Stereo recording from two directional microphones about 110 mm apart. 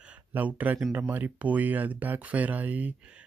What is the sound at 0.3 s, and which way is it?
Speech, 15° right (ahead or behind).